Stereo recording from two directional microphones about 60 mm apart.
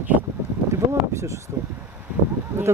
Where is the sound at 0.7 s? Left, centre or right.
Right.